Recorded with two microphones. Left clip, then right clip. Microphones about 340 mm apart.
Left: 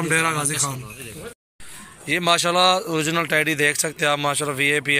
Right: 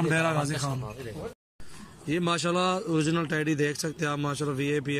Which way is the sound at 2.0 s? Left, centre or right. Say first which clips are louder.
Left 9 dB; centre.